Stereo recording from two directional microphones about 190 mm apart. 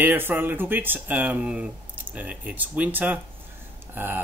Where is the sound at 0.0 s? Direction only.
10° right (ahead or behind).